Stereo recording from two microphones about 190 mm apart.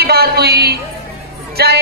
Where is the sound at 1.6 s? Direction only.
60° right (ahead or behind).